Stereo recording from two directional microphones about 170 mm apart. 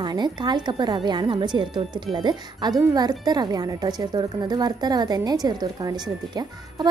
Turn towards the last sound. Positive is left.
turn(degrees=-25)  # may be behind; listen again after turning